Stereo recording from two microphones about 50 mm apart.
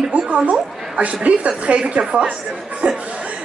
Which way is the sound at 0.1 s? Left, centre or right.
Right.